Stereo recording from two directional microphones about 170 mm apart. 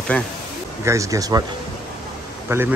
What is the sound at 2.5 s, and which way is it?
Speech, 15° right (ahead or behind).